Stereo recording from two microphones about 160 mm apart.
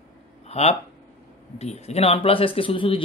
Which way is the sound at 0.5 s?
40° left (ahead or behind).